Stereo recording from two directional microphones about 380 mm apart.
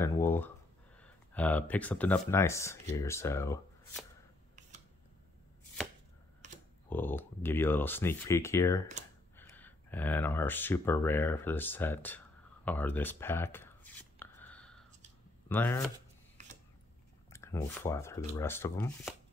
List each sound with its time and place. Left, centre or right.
0.0 s speech: centre
4.6 s camera: centre
6.9 s speech: centre
12.6 s a sound: centre
15.4 s speech: centre
17.3 s speech: centre